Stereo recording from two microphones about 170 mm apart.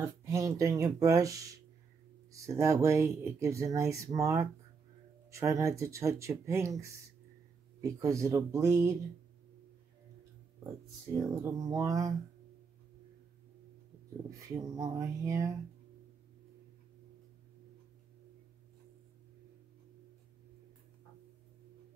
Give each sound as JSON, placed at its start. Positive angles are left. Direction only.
{"t": 0.0, "sound": "speech", "side_deg": -15}
{"t": 11.1, "sound": "speech", "side_deg": -20}
{"t": 14.5, "sound": "speech", "side_deg": -20}